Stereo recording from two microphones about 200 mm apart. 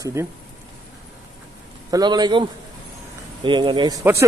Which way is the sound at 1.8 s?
20° right (ahead or behind).